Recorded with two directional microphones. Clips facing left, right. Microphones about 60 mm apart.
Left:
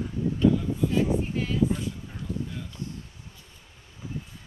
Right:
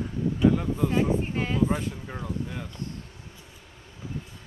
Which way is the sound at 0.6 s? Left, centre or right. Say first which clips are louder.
Right 1 dB; right.